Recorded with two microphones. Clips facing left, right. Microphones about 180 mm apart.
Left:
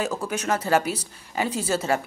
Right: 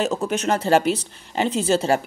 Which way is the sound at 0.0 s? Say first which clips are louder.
Right 5 dB; 25° right (ahead or behind).